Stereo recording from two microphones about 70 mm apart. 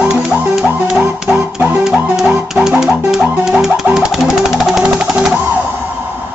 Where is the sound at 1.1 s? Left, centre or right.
Centre.